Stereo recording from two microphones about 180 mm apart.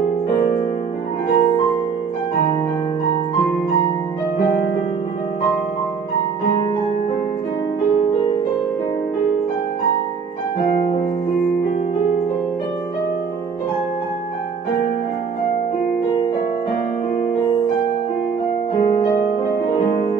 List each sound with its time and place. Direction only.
1.3 s music: 25° left (ahead or behind)
18.9 s music: 25° left (ahead or behind)